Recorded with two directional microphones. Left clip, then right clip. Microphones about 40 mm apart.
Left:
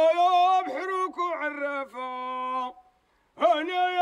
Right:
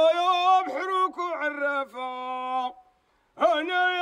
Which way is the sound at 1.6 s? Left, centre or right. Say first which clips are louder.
Right 4 dB; right.